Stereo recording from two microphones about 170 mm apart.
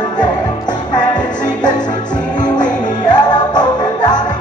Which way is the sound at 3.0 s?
25° left (ahead or behind).